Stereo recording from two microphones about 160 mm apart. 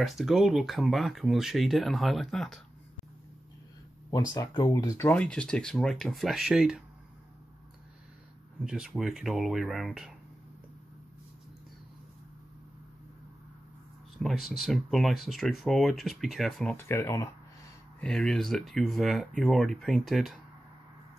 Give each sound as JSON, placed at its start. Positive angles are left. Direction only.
{"t": 0.0, "sound": "speech", "side_deg": 0}
{"t": 4.1, "sound": "speech", "side_deg": 20}
{"t": 8.6, "sound": "speech", "side_deg": -5}
{"t": 14.2, "sound": "speech", "side_deg": 0}
{"t": 16.7, "sound": "speech", "side_deg": 15}
{"t": 18.0, "sound": "speech", "side_deg": 5}